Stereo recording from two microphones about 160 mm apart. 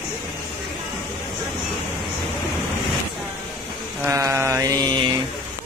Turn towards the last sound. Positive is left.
turn(degrees=-25)  # may be behind; listen again after turning